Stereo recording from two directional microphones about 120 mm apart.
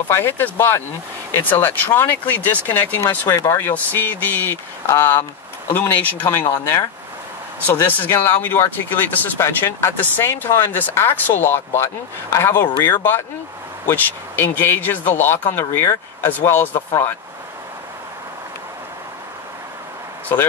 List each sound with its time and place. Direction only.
0.1 s speech: 20° left (ahead or behind)
7.6 s speech: 15° left (ahead or behind)